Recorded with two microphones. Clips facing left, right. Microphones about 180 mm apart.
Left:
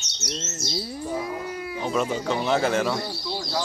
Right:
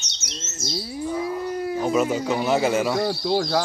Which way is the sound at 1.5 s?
40° right (ahead or behind).